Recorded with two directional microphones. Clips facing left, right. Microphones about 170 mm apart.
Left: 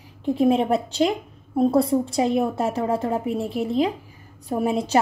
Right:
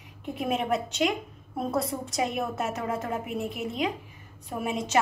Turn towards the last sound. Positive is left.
turn(degrees=35)  # may be behind; listen again after turning